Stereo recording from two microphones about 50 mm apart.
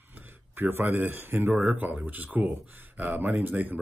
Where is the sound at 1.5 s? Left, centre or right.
Right.